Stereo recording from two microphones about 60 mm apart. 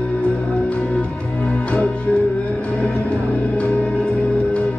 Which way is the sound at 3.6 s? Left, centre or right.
Left.